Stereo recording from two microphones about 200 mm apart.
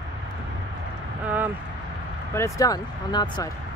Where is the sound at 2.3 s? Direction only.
15° left (ahead or behind).